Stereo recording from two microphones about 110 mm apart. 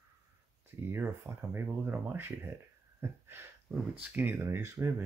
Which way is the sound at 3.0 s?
20° right (ahead or behind).